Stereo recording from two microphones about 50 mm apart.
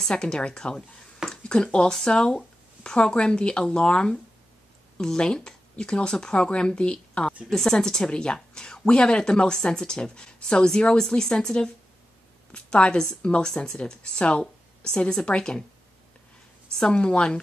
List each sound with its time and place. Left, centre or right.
0.1 s a woman's voice: centre
7.4 s a woman's voice: centre
16.8 s a woman's voice: centre